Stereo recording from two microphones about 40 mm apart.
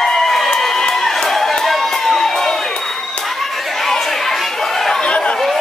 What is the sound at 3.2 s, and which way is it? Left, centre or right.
Chatter, centre.